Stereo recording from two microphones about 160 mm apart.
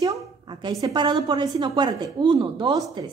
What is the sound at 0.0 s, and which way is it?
A woman's voice, 25° right (ahead or behind).